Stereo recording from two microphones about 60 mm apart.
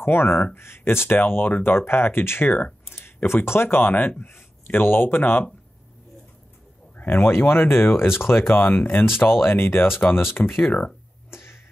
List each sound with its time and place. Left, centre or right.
0.0 s speech: left
7.0 s speech: left
11.2 s a sound: left